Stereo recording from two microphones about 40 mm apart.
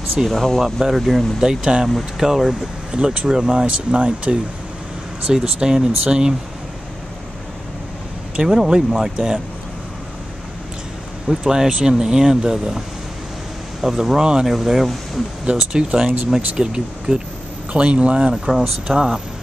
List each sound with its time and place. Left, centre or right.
0.3 s speech: centre
0.6 s speech: centre
2.9 s speech: right
3.6 s speech: right; by 6.3 s centre
8.4 s speech: centre
11.2 s speech: centre
15.4 s speech: centre
18.3 s speech: centre